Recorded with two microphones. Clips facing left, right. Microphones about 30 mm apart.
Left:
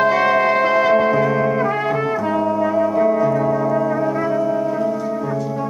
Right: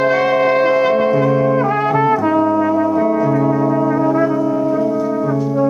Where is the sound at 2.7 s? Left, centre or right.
Centre.